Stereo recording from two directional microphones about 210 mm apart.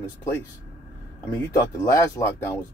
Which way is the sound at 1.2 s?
15° left (ahead or behind).